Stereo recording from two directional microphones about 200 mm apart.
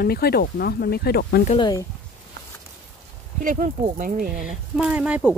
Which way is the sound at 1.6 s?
20° left (ahead or behind).